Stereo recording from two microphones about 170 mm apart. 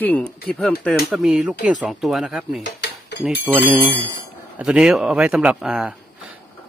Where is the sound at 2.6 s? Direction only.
80° left.